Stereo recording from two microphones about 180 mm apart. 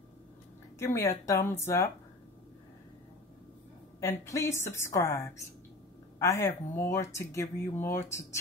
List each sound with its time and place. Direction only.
0.7 s speech: 15° left (ahead or behind)
4.0 s speech: 15° left (ahead or behind)